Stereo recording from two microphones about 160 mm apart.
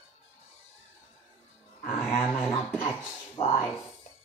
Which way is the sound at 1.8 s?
15° left (ahead or behind).